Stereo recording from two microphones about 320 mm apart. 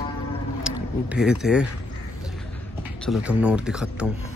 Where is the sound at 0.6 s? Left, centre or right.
Centre.